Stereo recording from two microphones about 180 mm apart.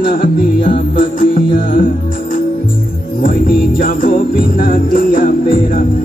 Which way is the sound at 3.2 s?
50° left (ahead or behind).